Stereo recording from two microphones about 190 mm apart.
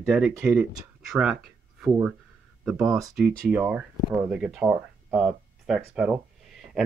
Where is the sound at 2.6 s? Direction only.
Centre (ahead or behind).